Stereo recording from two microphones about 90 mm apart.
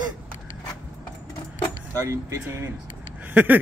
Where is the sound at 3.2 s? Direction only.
20° right (ahead or behind).